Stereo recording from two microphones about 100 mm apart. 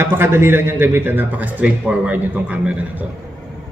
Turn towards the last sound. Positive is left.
turn(degrees=-15)  # may be behind; listen again after turning